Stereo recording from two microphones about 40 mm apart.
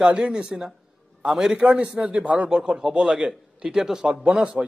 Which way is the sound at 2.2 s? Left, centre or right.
Right.